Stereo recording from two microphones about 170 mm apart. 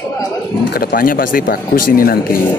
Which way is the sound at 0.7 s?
60° left (ahead or behind).